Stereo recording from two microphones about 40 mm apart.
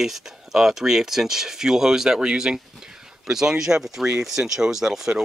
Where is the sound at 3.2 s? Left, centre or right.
Centre.